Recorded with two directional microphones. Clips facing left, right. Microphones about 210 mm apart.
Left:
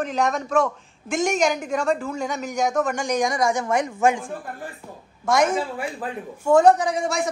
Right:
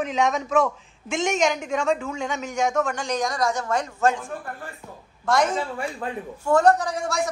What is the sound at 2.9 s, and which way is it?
Speech, 15° left (ahead or behind).